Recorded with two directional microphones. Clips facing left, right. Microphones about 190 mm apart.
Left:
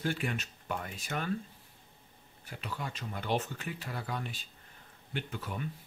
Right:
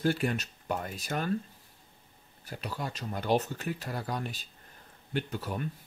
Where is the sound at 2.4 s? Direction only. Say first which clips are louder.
Right 3 dB; 40° right (ahead or behind).